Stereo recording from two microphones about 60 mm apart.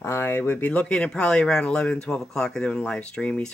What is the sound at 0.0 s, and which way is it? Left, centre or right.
Speech, left.